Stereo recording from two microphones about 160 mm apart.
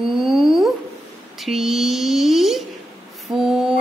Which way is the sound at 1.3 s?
Centre (ahead or behind).